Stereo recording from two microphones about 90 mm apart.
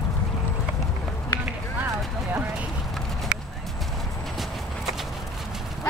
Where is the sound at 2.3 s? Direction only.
20° right (ahead or behind).